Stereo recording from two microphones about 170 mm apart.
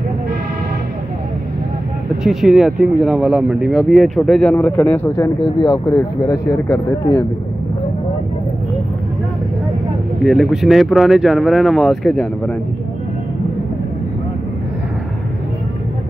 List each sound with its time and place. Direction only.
2.2 s speech: centre (ahead or behind)
5.1 s speech: 25° left (ahead or behind)
10.2 s speech: centre (ahead or behind)